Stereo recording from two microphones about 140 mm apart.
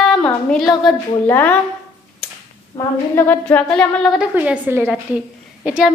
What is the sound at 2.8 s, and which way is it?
A woman's voice, 15° left (ahead or behind).